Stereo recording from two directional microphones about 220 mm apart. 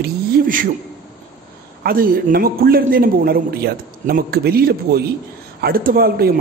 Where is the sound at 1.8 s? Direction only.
40° right (ahead or behind).